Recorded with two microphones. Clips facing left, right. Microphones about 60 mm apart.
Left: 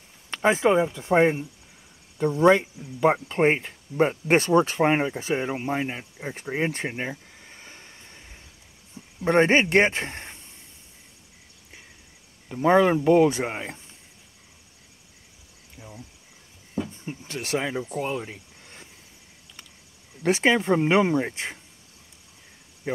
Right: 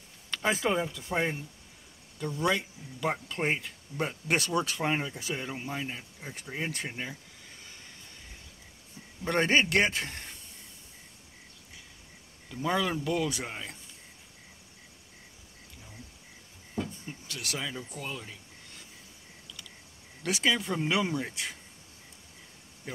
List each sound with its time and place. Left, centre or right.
0.3 s speech: left
6.4 s a sound: left
9.2 s speech: left
12.4 s speech: left
16.9 s speech: left
17.9 s cricket: left
20.2 s speech: left